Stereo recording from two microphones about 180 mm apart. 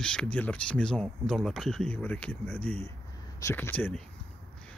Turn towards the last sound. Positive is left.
turn(degrees=10)  # may be behind; listen again after turning